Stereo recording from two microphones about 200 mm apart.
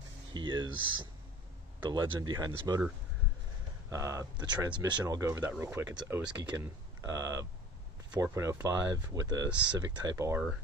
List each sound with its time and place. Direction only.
0.3 s a sound: 20° right (ahead or behind)
0.7 s speech: 85° right
1.8 s speech: 25° right (ahead or behind)
3.9 s speech: 15° right (ahead or behind)
9.5 s speech: 5° right (ahead or behind)
9.8 s speech: 15° right (ahead or behind)